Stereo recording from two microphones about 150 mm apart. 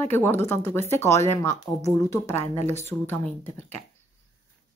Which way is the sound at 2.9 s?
15° left (ahead or behind).